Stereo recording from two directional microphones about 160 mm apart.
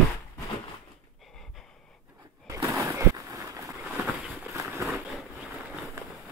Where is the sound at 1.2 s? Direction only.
Centre (ahead or behind).